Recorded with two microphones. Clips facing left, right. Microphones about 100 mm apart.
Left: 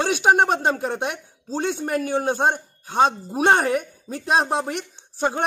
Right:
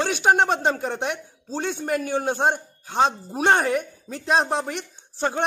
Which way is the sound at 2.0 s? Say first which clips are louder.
Left 2 dB; 15° left (ahead or behind).